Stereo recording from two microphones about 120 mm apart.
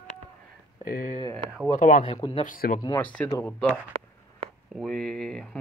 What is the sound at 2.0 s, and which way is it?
Speech, 55° left (ahead or behind).